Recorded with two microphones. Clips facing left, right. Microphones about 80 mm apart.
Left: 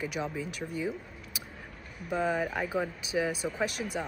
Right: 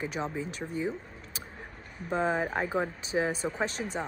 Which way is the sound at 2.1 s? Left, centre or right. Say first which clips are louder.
Right 1 dB; right.